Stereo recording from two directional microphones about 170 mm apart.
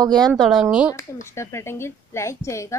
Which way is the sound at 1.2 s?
15° left (ahead or behind).